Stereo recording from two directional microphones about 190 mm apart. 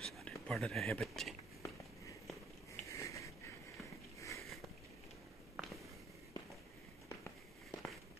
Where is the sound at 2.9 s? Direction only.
15° left (ahead or behind).